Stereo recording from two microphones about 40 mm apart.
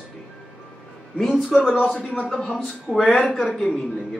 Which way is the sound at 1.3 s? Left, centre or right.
Centre.